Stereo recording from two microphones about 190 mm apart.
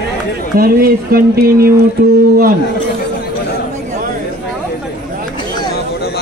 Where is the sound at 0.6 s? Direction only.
50° right (ahead or behind).